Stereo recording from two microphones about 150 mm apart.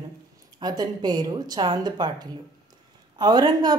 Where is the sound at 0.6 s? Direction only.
25° right (ahead or behind).